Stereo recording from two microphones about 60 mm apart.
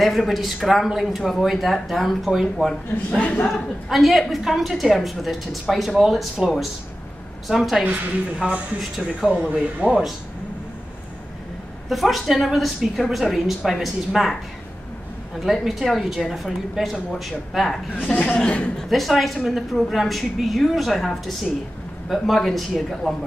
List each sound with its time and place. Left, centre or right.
0.0 s a woman's voice: centre
3.1 s a man's voice: left
3.9 s a woman's voice: centre
7.8 s a woman's voice: right
8.9 s a woman's voice: centre
11.9 s a woman's voice: centre
15.4 s a woman's voice: centre
18.1 s a man's voice: left
18.8 s a woman's voice: centre